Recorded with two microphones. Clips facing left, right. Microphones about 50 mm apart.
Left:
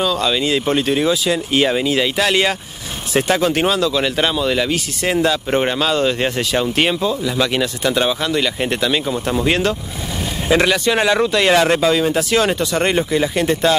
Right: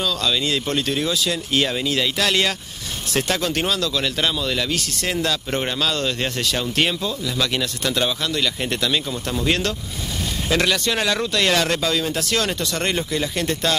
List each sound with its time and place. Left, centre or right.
0.0 s speech: centre